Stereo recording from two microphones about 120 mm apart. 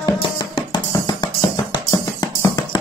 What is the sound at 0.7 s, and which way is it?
Music, 35° left (ahead or behind).